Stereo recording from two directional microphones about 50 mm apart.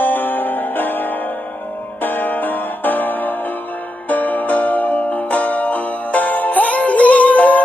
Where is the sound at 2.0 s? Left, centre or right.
Left.